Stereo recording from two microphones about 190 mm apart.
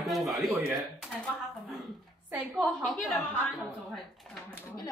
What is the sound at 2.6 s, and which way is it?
Speech, centre (ahead or behind).